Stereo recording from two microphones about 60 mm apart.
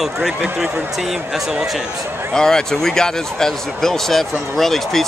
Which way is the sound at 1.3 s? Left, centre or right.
Centre.